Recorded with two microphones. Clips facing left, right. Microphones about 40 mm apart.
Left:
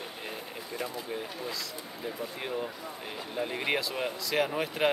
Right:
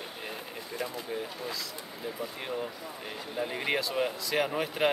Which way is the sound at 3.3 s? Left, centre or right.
Centre.